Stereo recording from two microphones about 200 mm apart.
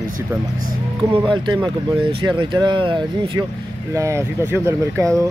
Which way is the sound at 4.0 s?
15° right (ahead or behind).